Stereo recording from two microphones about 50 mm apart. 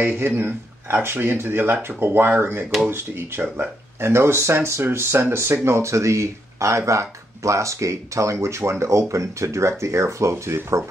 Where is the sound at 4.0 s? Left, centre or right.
Right.